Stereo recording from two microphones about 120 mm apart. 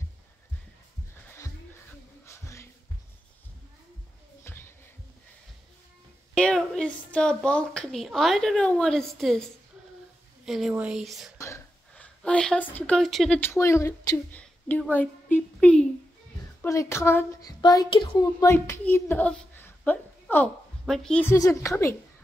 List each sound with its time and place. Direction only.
2.2 s a sound: 25° left (ahead or behind)
4.5 s music: 20° left (ahead or behind)
6.3 s a woman's voice: 5° left (ahead or behind)
11.3 s whispering: 25° left (ahead or behind)
11.9 s speech: 10° left (ahead or behind)
13.4 s speech: 20° left (ahead or behind)
16.6 s a child's voice: 25° left (ahead or behind); by 18.2 s 45° left (ahead or behind)
18.2 s speech: 25° left (ahead or behind)
20.8 s speech: 5° left (ahead or behind)
21.4 s a woman's voice: 25° left (ahead or behind)